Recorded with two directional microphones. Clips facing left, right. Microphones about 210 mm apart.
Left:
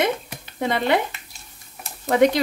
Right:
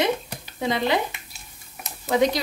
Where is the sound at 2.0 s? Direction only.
60° left (ahead or behind).